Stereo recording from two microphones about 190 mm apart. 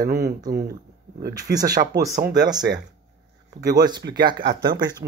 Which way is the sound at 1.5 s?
20° right (ahead or behind).